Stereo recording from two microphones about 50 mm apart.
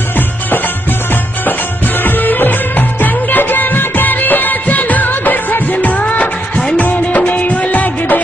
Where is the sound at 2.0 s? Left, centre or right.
Left.